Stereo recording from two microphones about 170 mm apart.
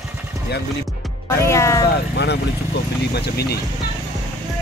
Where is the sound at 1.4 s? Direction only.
15° left (ahead or behind).